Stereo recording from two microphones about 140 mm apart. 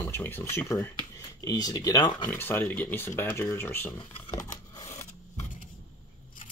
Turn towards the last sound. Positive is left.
turn(degrees=25)  # may be behind; listen again after turning